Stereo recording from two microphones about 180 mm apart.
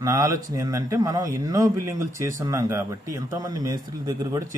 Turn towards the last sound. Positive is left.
turn(degrees=-20)  # may be behind; listen again after turning